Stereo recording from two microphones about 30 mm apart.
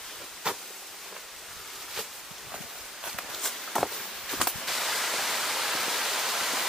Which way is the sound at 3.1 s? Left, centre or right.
Centre.